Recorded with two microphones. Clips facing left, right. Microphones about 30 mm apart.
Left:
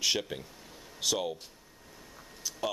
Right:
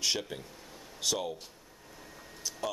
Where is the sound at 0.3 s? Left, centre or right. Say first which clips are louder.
Left 2 dB; centre.